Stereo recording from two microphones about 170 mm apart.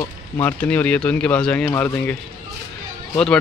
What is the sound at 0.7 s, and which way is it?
Speech, 10° left (ahead or behind).